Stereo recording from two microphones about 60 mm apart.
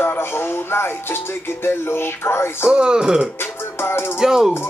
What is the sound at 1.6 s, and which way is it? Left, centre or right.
Music, left.